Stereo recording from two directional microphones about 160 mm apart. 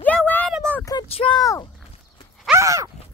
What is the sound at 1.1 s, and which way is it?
Speech, 30° left (ahead or behind).